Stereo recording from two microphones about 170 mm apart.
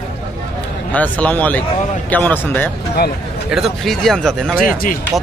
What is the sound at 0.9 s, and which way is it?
Speech, 10° left (ahead or behind).